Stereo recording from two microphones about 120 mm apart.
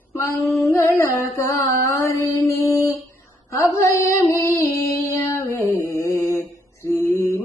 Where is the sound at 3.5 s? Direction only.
25° left (ahead or behind).